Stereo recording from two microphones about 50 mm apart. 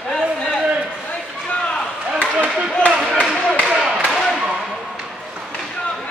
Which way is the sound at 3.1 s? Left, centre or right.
Centre.